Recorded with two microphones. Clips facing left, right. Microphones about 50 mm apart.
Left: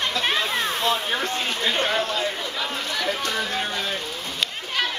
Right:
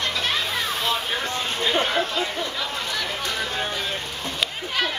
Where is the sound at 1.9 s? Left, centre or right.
Right.